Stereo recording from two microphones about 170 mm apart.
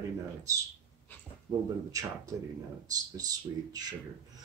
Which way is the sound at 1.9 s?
20° right (ahead or behind).